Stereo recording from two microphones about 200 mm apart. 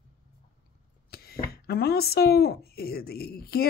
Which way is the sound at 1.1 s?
50° left (ahead or behind).